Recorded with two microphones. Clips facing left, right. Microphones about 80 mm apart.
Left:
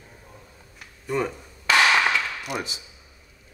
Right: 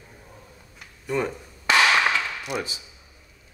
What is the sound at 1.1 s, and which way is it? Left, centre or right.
Speech, centre.